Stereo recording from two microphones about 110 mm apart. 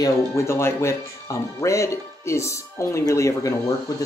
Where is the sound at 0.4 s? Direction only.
25° left (ahead or behind).